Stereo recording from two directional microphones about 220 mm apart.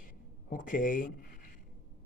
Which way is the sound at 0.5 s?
35° left (ahead or behind).